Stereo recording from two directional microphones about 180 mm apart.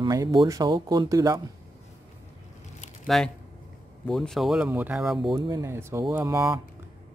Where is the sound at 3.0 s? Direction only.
Centre (ahead or behind).